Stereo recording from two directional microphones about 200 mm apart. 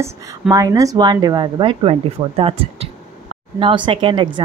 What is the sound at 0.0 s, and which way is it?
A woman's voice, 15° right (ahead or behind).